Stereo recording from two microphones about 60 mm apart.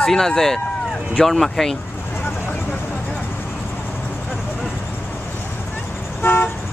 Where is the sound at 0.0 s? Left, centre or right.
Centre.